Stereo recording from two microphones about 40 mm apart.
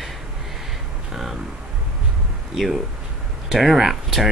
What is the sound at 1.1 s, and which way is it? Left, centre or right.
Speech, centre.